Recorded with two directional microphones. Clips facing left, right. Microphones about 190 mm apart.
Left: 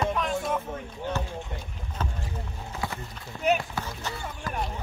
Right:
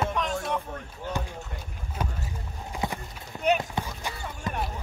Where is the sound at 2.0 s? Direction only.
10° right (ahead or behind).